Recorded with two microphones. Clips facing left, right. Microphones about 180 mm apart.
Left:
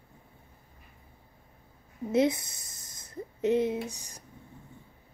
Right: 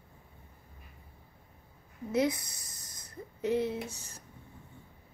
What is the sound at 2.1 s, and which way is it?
Speech, 25° left (ahead or behind).